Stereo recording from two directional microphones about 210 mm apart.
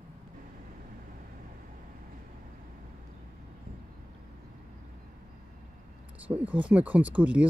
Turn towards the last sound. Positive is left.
turn(degrees=-5)  # may be behind; listen again after turning